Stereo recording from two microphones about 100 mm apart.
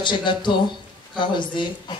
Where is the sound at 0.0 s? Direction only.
50° left (ahead or behind).